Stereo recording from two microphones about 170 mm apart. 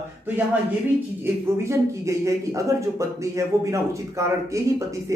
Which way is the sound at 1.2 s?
15° right (ahead or behind).